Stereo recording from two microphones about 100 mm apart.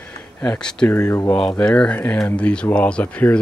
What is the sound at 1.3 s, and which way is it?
Speech, 10° left (ahead or behind).